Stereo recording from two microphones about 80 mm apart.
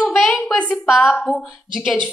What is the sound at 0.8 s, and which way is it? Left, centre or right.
Speech, centre.